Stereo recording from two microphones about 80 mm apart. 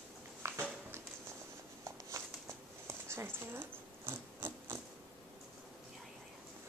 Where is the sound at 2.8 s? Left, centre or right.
Right.